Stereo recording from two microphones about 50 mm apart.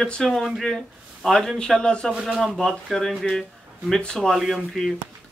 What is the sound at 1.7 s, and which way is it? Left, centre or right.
Speech, centre.